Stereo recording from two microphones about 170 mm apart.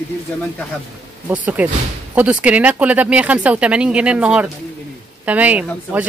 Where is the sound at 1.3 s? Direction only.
10° right (ahead or behind).